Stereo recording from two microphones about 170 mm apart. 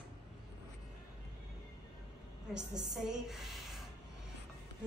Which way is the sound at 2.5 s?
5° right (ahead or behind).